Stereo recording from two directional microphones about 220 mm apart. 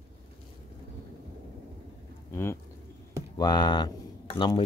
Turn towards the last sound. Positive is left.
turn(degrees=20)  # may be behind; listen again after turning